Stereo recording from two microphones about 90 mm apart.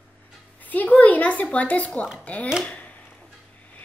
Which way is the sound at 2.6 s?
15° left (ahead or behind).